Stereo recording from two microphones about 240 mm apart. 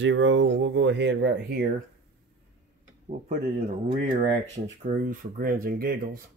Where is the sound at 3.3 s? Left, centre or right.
Right.